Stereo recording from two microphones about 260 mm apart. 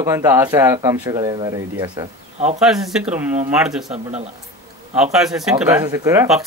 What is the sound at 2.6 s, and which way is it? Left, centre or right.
Speech, centre.